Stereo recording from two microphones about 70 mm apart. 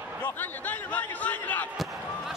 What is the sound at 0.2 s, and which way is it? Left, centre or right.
Speech, left.